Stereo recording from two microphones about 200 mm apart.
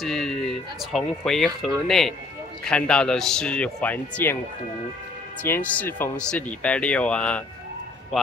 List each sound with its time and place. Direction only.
0.0 s speech: centre (ahead or behind)
5.4 s speech: 10° left (ahead or behind)